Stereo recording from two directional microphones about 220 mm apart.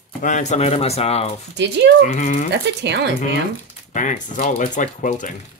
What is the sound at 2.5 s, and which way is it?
Speech, 50° right (ahead or behind).